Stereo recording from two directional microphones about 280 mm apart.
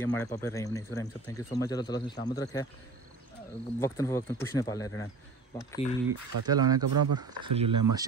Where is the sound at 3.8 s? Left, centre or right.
Centre.